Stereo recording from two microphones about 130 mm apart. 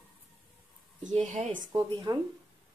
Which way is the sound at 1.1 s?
60° right (ahead or behind).